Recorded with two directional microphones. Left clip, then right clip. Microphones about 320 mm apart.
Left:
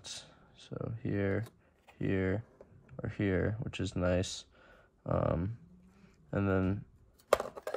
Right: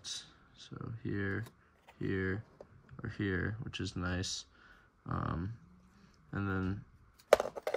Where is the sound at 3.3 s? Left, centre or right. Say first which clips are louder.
Left 5 dB; left.